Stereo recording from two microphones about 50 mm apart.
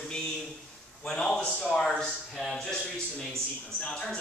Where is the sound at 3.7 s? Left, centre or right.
Centre.